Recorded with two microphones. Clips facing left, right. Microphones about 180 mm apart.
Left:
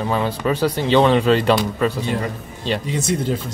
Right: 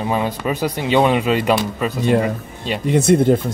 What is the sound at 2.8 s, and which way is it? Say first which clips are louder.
Speech: right 8 dB; 55° right (ahead or behind).